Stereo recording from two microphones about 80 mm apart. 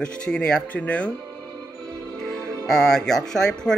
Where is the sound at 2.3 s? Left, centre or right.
Centre.